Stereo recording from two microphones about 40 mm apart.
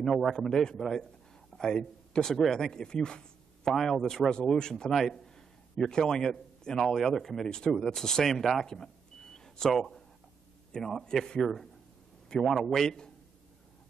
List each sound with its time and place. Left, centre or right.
0.0 s a man's voice: centre
3.7 s speech: centre
4.3 s speech: centre
5.1 s a sound: centre
6.8 s speech: centre
8.6 s a sound: centre
10.7 s speech: centre